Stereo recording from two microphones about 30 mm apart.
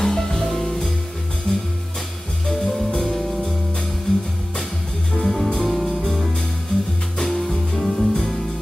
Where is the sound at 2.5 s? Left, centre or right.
Centre.